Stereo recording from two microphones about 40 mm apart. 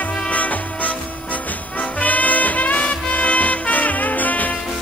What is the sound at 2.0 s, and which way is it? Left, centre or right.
Music, left.